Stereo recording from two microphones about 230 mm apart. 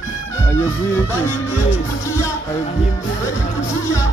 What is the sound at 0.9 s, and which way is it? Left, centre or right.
Music, centre.